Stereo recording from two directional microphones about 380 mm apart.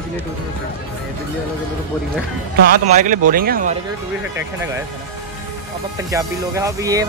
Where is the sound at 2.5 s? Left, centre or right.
Right.